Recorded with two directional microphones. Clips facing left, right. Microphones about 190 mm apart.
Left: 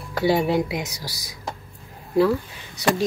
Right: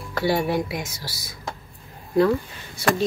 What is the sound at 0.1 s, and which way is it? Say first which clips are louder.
Speech: left 2 dB; 20° left (ahead or behind).